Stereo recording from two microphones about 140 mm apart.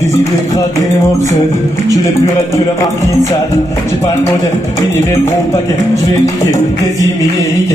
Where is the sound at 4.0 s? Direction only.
20° left (ahead or behind).